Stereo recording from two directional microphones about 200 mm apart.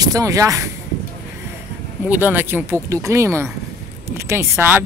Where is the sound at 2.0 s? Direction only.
10° right (ahead or behind).